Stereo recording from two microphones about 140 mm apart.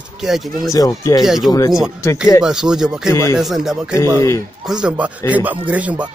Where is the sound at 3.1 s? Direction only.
20° left (ahead or behind).